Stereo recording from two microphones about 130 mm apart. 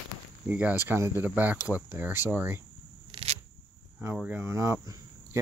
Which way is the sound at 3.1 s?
45° right (ahead or behind).